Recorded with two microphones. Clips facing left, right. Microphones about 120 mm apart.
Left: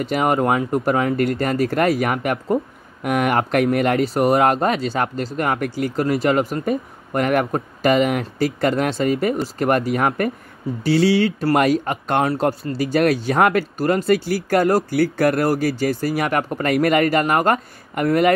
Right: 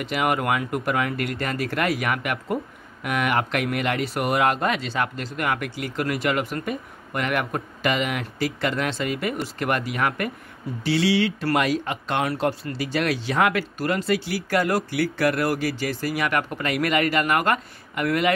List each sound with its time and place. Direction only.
0.0 s speech: 35° left (ahead or behind)